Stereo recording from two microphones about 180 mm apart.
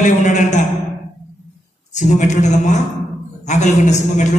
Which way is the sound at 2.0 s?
40° left (ahead or behind).